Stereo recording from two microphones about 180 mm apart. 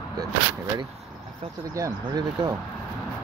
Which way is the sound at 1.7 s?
20° right (ahead or behind).